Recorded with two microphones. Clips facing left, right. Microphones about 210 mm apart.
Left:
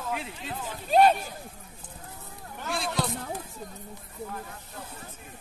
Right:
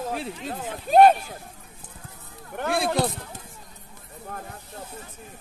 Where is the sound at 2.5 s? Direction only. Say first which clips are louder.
Right 7 dB; 60° right (ahead or behind).